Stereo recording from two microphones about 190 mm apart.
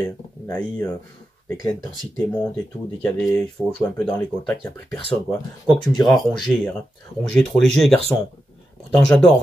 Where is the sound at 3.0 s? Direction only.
5° left (ahead or behind).